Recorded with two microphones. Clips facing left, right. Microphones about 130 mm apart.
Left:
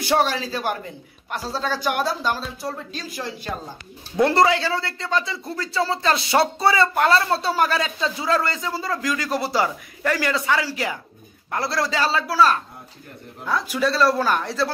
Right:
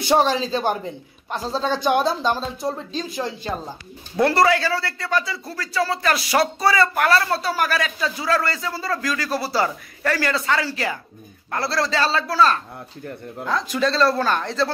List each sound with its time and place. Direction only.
0.0 s speech: 20° right (ahead or behind)
4.2 s a man's voice: 20° left (ahead or behind)